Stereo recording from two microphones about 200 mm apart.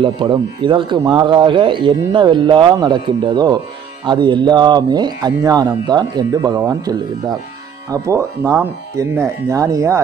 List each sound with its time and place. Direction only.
0.0 s speech: 25° right (ahead or behind)